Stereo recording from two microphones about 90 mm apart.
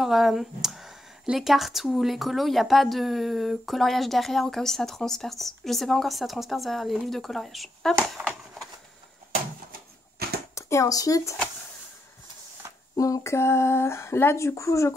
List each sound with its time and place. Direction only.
0.0 s a woman's voice: 5° right (ahead or behind)
10.5 s speech: 35° left (ahead or behind)
12.9 s speech: 40° left (ahead or behind)